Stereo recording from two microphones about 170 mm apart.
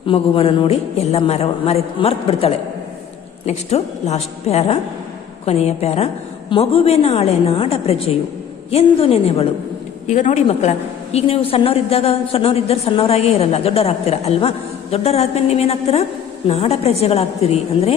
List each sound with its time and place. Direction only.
0.0 s a woman's voice: 30° left (ahead or behind)